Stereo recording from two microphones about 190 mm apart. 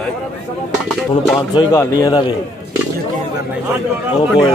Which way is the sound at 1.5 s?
15° left (ahead or behind).